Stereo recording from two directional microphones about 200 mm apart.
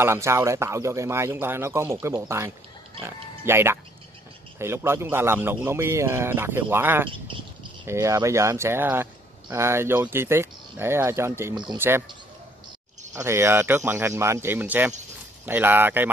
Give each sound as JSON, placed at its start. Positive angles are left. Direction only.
{"t": 0.0, "sound": "speech", "side_deg": -15}
{"t": 7.1, "sound": "speech", "side_deg": -25}
{"t": 7.8, "sound": "speech", "side_deg": -15}
{"t": 13.1, "sound": "speech", "side_deg": -15}